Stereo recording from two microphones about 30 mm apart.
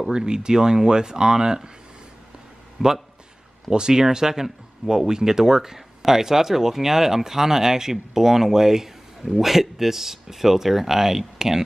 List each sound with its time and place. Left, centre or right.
0.1 s speech: right
2.8 s speech: centre